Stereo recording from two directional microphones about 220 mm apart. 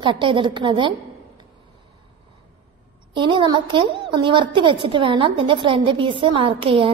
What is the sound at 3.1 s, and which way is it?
A woman's voice, 20° right (ahead or behind).